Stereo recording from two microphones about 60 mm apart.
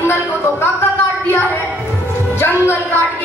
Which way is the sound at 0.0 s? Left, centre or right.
Left.